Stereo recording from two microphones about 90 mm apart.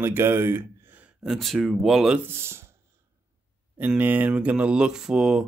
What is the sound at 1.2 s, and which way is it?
Speech, centre (ahead or behind).